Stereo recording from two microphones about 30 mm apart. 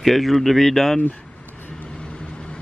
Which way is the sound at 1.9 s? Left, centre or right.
Left.